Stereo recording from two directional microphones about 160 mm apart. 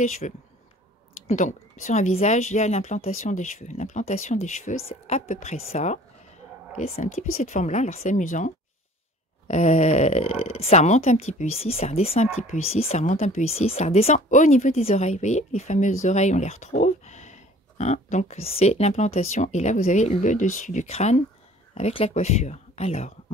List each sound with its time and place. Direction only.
0.2 s speech: 45° left (ahead or behind)
9.5 s speech: 45° left (ahead or behind)